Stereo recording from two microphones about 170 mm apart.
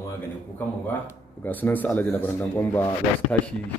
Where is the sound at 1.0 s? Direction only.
10° left (ahead or behind).